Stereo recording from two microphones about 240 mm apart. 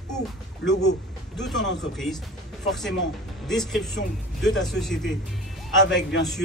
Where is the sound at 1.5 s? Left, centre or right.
Left.